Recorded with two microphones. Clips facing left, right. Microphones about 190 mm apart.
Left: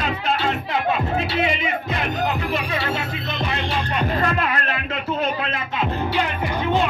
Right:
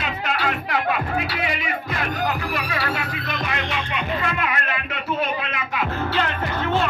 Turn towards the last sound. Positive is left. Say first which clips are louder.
# left 2 dB
turn(degrees=15)  # may be behind; listen again after turning